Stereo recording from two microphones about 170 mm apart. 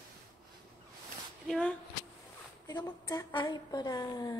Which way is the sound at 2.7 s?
25° left (ahead or behind).